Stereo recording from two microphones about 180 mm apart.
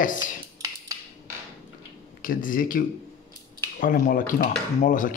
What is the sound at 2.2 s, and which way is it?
Speech, 50° left (ahead or behind).